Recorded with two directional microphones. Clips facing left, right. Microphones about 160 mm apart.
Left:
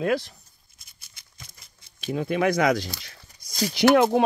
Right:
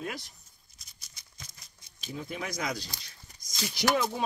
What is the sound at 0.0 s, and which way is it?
Speech, 75° left (ahead or behind).